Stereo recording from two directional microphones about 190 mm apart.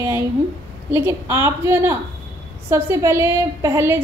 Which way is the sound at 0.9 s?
15° right (ahead or behind).